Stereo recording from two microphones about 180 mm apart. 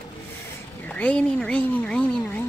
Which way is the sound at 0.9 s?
10° left (ahead or behind).